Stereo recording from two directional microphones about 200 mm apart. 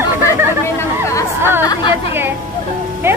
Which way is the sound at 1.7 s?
20° left (ahead or behind).